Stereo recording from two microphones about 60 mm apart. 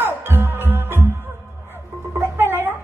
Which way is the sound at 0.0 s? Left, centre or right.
Right.